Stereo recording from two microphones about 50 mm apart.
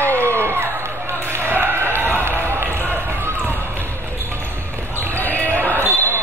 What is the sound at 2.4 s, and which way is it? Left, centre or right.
Basketball bounce, right.